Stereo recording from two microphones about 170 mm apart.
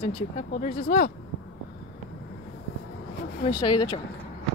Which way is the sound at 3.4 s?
25° left (ahead or behind).